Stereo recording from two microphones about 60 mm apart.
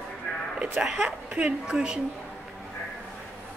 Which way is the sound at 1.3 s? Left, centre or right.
Centre.